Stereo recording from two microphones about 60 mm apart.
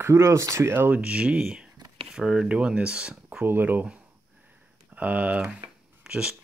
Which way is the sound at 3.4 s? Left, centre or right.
Right.